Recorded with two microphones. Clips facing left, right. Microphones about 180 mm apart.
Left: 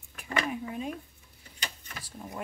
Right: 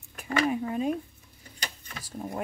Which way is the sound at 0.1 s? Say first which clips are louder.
Right 6 dB; 40° right (ahead or behind).